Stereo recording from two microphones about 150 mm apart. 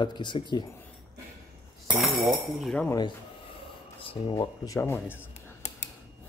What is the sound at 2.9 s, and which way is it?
Speech, 25° left (ahead or behind).